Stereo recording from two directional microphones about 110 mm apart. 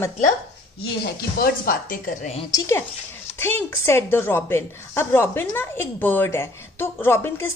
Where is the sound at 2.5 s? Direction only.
30° left (ahead or behind).